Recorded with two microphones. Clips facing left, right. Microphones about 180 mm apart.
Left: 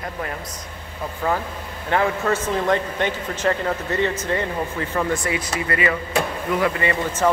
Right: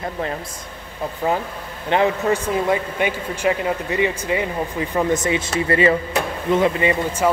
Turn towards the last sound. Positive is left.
turn(degrees=-10)  # may be behind; listen again after turning